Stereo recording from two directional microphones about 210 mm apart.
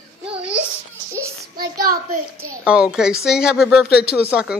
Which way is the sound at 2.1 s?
90° right.